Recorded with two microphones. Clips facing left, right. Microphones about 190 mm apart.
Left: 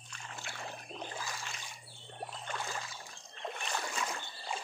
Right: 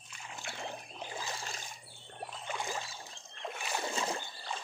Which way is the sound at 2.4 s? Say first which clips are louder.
Right 4 dB; 15° right (ahead or behind).